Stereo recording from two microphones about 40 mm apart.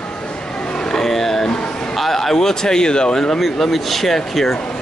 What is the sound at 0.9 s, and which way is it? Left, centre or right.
A man's voice, centre.